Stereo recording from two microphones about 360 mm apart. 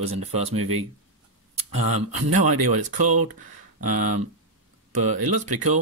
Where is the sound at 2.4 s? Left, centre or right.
Right.